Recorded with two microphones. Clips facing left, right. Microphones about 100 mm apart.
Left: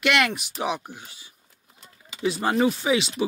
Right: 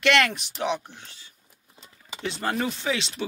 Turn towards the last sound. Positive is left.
turn(degrees=10)  # may be behind; listen again after turning